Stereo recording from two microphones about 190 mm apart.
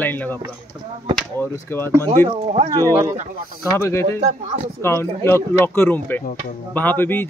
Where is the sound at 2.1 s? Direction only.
35° right (ahead or behind).